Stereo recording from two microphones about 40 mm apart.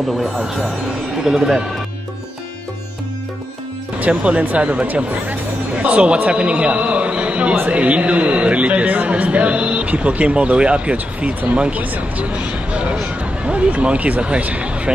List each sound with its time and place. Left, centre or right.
0.6 s speech: centre
1.1 s speech: centre
4.0 s speech: right
11.8 s speech: right
12.3 s a sound: right
14.4 s speech: right